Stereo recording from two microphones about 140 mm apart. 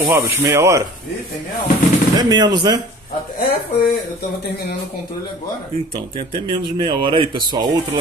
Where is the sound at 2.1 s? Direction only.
30° right (ahead or behind).